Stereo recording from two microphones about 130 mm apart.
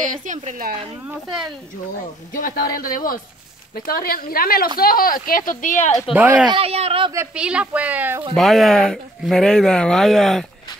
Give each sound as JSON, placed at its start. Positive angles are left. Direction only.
{"t": 0.0, "sound": "a woman's voice", "side_deg": -80}
{"t": 1.0, "sound": "speech", "side_deg": -5}
{"t": 2.3, "sound": "speech", "side_deg": 90}
{"t": 6.1, "sound": "speech", "side_deg": -15}
{"t": 6.4, "sound": "speech", "side_deg": -45}
{"t": 7.3, "sound": "speech", "side_deg": -10}
{"t": 8.4, "sound": "speech", "side_deg": 0}